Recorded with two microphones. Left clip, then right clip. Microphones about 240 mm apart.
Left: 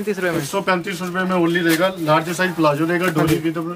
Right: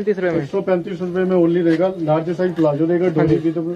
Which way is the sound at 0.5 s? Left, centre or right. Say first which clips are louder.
Even; left.